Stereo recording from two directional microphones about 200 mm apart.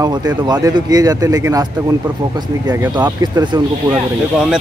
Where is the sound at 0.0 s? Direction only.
20° right (ahead or behind).